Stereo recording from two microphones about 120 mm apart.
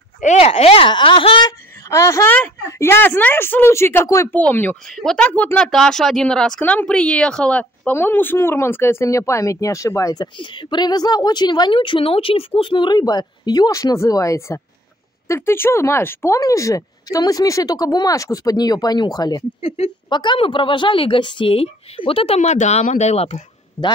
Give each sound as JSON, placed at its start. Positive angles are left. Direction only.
{"t": 0.2, "sound": "speech", "side_deg": 85}
{"t": 0.5, "sound": "a woman's voice", "side_deg": 55}
{"t": 1.9, "sound": "speech", "side_deg": 25}
{"t": 4.3, "sound": "a woman's voice", "side_deg": 15}
{"t": 23.8, "sound": "a man's voice", "side_deg": -20}